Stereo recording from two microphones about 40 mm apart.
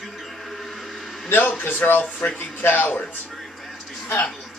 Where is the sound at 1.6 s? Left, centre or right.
Left.